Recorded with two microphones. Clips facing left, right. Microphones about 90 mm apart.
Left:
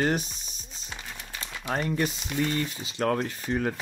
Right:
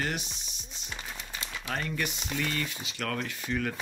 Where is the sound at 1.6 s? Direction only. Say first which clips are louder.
Left 6 dB; 30° left (ahead or behind).